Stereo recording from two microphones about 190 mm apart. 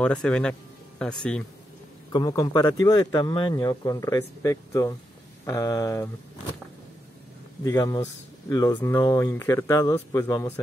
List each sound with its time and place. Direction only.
0.0 s speech: 5° left (ahead or behind)
2.1 s speech: 20° left (ahead or behind)
7.6 s speech: 20° left (ahead or behind)